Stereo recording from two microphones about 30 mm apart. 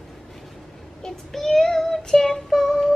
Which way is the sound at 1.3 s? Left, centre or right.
Centre.